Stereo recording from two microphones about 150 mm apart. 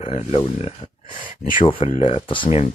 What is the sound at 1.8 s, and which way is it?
Speech, 50° left (ahead or behind).